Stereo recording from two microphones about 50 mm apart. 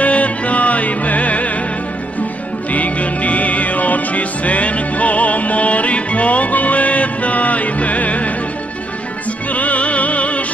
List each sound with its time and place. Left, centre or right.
0.0 s music: left
2.7 s music: left
9.5 s music: left